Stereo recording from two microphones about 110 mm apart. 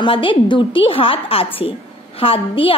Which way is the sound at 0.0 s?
50° left (ahead or behind).